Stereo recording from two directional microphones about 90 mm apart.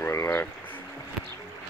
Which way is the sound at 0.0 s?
30° left (ahead or behind).